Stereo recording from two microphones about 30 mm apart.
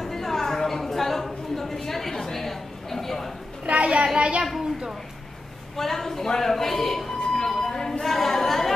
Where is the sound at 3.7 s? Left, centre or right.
Right.